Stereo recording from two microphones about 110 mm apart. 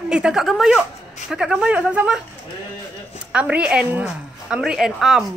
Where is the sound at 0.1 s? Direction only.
5° right (ahead or behind).